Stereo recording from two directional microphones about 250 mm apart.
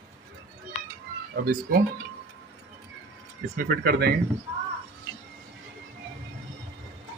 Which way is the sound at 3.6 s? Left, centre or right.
Right.